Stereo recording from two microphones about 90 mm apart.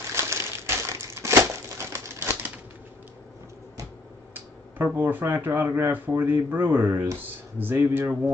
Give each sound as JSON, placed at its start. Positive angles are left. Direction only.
{"t": 0.1, "sound": "crushing", "side_deg": -30}
{"t": 4.3, "sound": "speech", "side_deg": -25}